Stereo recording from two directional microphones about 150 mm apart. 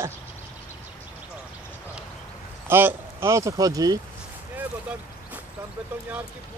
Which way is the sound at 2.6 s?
15° right (ahead or behind).